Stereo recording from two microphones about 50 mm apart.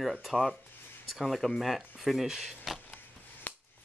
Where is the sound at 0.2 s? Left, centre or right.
Centre.